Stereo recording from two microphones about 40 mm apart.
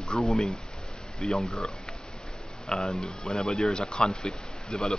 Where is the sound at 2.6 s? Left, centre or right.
Centre.